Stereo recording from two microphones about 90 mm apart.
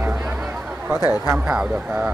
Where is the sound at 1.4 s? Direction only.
15° right (ahead or behind).